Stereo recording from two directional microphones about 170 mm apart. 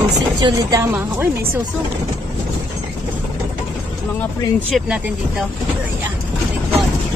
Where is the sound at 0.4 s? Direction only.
20° right (ahead or behind).